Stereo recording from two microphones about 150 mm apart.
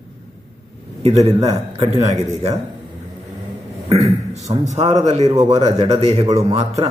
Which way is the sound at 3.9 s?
45° right (ahead or behind).